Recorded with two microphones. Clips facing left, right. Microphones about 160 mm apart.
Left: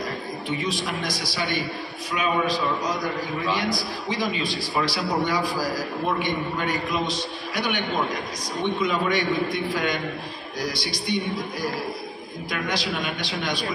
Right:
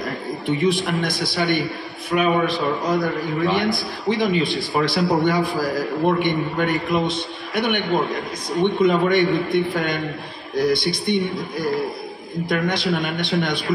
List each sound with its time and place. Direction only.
0.7 s a man's voice: 60° right (ahead or behind)
12.4 s a man's voice: 55° right (ahead or behind)